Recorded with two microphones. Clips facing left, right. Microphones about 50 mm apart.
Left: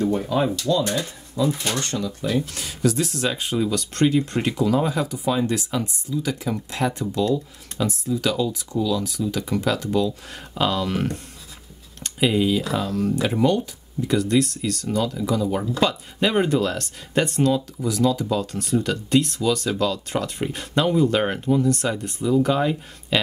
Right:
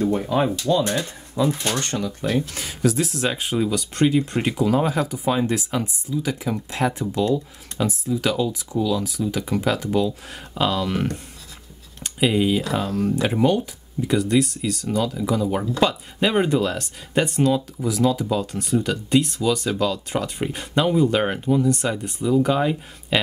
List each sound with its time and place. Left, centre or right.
0.0 s speech: centre
0.6 s speech: right
1.4 s speech: right
2.3 s speech: right
4.6 s speech: right
10.3 s speech: centre